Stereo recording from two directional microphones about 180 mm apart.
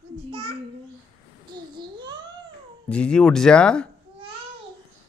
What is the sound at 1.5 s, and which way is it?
Babbling, 25° right (ahead or behind).